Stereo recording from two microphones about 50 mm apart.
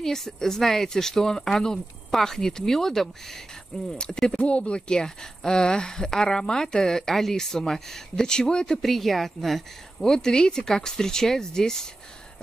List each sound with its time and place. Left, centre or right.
0.0 s a woman's voice: centre
4.4 s a woman's voice: left
8.8 s a woman's voice: centre